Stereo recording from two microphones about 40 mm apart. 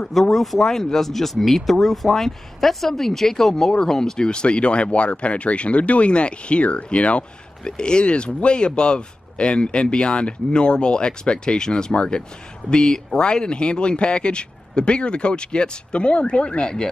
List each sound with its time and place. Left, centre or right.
0.1 s speech: centre; by 16.9 s left